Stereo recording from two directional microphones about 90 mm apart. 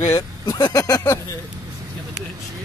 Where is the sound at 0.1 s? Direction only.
35° left (ahead or behind).